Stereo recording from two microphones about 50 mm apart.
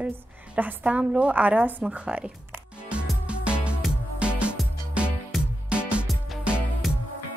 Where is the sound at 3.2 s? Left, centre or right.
Right.